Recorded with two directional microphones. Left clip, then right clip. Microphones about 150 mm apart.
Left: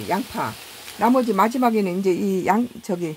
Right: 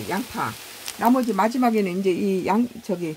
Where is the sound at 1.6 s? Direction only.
15° left (ahead or behind).